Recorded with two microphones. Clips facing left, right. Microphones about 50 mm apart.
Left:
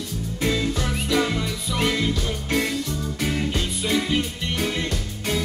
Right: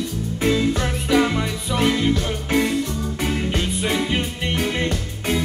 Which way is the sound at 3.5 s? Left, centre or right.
Right.